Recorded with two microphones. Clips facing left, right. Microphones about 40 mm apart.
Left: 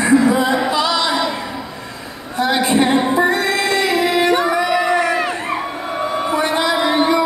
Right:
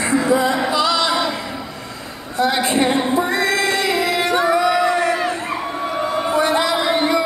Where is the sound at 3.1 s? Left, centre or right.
Left.